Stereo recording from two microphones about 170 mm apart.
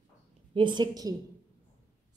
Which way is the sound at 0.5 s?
25° right (ahead or behind).